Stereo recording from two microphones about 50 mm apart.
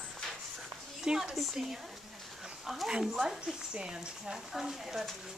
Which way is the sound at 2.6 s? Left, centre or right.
Centre.